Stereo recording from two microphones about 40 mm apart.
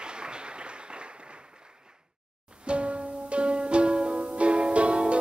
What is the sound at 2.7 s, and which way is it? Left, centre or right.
Music, right.